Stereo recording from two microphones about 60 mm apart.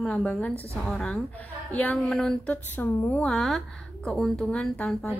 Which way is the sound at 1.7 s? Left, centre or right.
Left.